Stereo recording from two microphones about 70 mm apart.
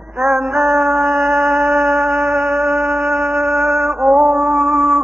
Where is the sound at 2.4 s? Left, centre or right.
Centre.